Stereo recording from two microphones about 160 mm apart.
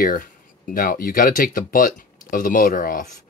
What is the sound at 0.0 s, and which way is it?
Speech, 60° left (ahead or behind).